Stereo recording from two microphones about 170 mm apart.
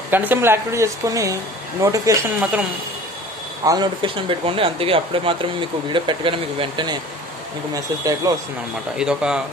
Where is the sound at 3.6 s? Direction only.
25° right (ahead or behind).